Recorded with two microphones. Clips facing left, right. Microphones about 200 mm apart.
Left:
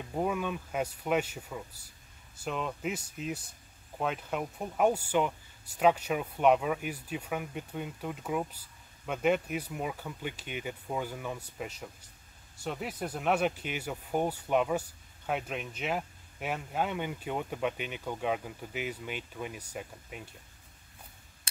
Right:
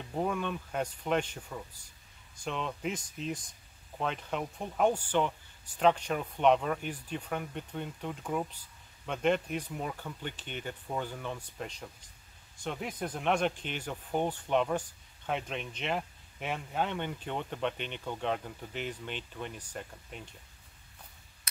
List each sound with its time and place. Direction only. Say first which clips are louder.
0.0 s speech: left 1 dB; 5° left (ahead or behind)